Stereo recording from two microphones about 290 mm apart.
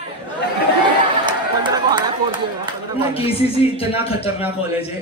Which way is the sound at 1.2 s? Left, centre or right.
Centre.